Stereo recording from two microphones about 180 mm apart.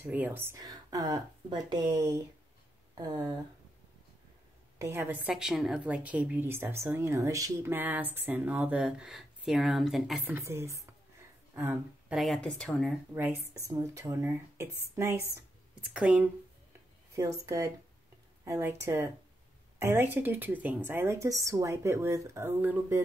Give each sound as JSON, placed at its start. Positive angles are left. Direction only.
{"t": 0.0, "sound": "speech", "side_deg": -10}
{"t": 4.7, "sound": "a woman's voice", "side_deg": -15}
{"t": 10.3, "sound": "a woman's voice", "side_deg": -15}
{"t": 12.2, "sound": "speech", "side_deg": 5}
{"t": 13.1, "sound": "a woman's voice", "side_deg": -10}
{"t": 17.1, "sound": "a woman's voice", "side_deg": -15}